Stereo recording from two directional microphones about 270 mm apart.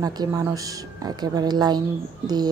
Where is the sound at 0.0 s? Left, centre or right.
Centre.